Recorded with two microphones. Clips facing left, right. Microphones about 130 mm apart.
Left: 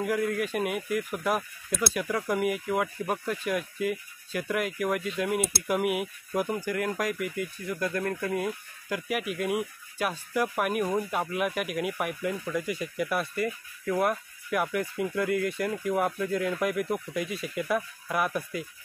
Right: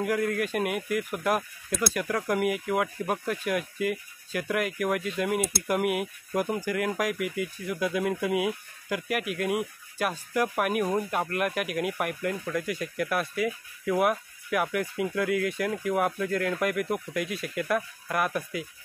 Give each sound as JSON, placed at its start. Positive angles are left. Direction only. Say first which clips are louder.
{"t": 0.0, "sound": "speech", "louder": "right 1 dB", "side_deg": 0}